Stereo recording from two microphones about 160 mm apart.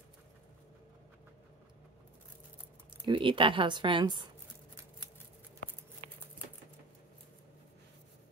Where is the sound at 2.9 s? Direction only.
30° right (ahead or behind).